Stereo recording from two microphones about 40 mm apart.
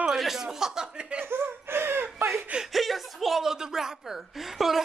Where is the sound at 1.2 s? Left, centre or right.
Right.